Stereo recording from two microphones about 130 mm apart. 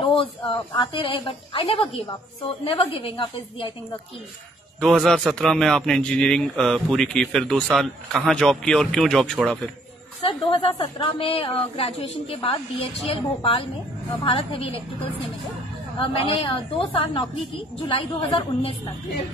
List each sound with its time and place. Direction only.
0.0 s a woman's voice: 45° left (ahead or behind)
4.7 s a man's voice: centre (ahead or behind)
10.2 s a woman's voice: 40° left (ahead or behind)
16.0 s a woman's voice: 40° left (ahead or behind)